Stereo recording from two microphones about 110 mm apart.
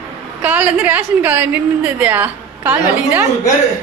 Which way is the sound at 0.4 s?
15° right (ahead or behind).